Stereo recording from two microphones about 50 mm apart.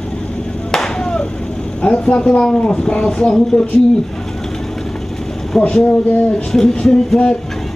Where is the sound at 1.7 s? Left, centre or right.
Centre.